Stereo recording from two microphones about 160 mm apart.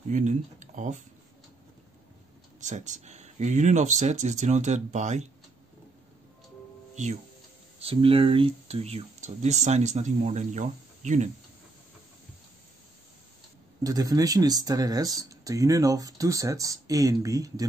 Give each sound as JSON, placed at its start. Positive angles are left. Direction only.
{"t": 0.1, "sound": "speech", "side_deg": -50}
{"t": 2.6, "sound": "speech", "side_deg": -50}
{"t": 7.8, "sound": "speech", "side_deg": -35}
{"t": 13.8, "sound": "speech", "side_deg": -25}